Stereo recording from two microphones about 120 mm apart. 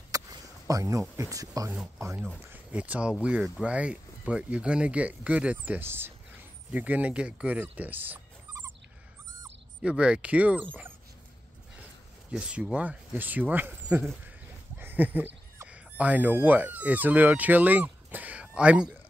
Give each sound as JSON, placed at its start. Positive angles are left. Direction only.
{"t": 0.1, "sound": "a sound", "side_deg": -30}
{"t": 1.1, "sound": "speech", "side_deg": -25}
{"t": 2.5, "sound": "speech", "side_deg": -10}
{"t": 9.8, "sound": "speech", "side_deg": -10}
{"t": 12.3, "sound": "speech", "side_deg": -10}